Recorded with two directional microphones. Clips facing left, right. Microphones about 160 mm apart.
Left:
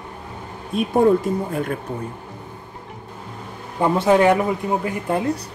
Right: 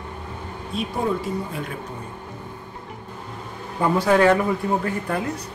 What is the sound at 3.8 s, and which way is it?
Speech, 25° left (ahead or behind).